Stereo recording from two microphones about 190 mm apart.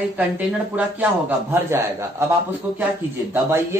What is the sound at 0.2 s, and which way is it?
Speech, 10° right (ahead or behind).